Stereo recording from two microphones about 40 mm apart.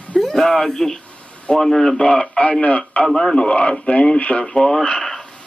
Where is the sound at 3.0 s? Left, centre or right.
Centre.